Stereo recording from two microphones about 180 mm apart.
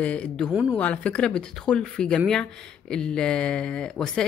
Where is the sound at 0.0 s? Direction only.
5° left (ahead or behind).